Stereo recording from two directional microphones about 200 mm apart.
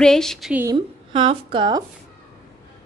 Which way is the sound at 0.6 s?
25° right (ahead or behind).